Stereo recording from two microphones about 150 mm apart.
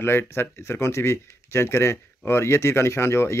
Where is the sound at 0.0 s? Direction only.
15° left (ahead or behind).